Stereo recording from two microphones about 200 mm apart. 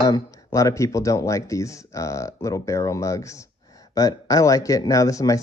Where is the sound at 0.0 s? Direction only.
20° left (ahead or behind).